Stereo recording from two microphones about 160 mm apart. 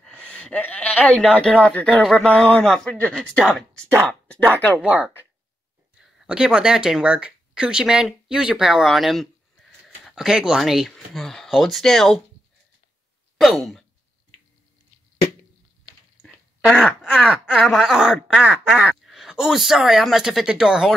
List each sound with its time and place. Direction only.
0.0 s speech: 10° left (ahead or behind)
4.8 s speech: 10° right (ahead or behind)
13.4 s sigh: centre (ahead or behind)
16.2 s speech: 5° left (ahead or behind)